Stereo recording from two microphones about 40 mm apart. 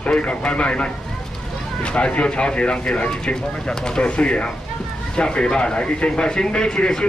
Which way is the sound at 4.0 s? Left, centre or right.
Left.